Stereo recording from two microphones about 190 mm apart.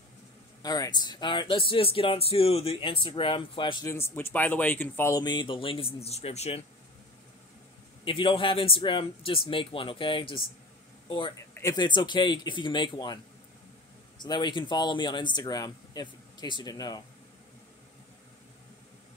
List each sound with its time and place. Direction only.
0.6 s speech: 20° left (ahead or behind)
3.8 s speech: 15° left (ahead or behind); by 6.6 s 35° left (ahead or behind)
8.0 s a man's voice: 25° left (ahead or behind)